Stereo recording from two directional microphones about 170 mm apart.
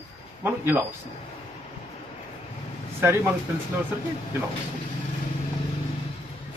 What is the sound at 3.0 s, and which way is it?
Speech, 15° right (ahead or behind).